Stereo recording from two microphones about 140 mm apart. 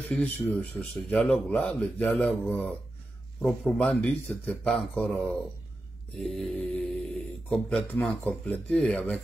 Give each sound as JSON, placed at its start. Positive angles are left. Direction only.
{"t": 0.1, "sound": "speech", "side_deg": 10}